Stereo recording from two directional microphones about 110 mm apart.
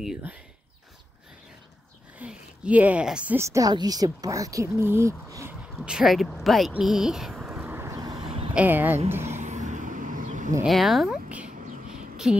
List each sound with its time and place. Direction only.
2.1 s a woman's voice: 10° right (ahead or behind)
3.3 s speech: 30° right (ahead or behind)
5.9 s speech: 5° right (ahead or behind)
7.5 s vehicle: 20° right (ahead or behind)
8.0 s a sound: 40° right (ahead or behind)
8.5 s speech: 15° right (ahead or behind)
9.1 s a sound: 25° right (ahead or behind)
9.4 s vehicle: 90° right
10.6 s a sound: centre (ahead or behind)